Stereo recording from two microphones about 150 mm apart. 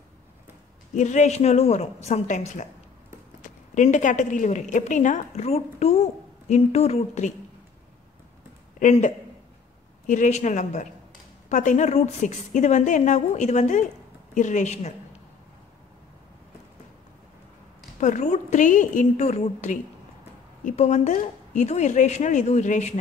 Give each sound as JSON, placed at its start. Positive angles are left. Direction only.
{"t": 0.9, "sound": "a woman's voice", "side_deg": 55}
{"t": 8.7, "sound": "a woman's voice", "side_deg": 55}
{"t": 18.0, "sound": "a woman's voice", "side_deg": 55}